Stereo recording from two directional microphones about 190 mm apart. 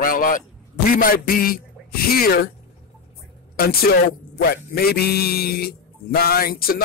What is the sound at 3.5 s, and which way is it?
A man's voice, 55° left (ahead or behind).